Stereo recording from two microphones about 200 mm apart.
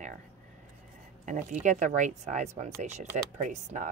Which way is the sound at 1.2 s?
40° right (ahead or behind).